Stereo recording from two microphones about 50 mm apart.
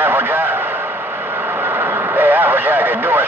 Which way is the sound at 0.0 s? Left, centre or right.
Right.